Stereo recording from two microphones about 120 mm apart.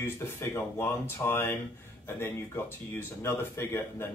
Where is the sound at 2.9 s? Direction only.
20° left (ahead or behind).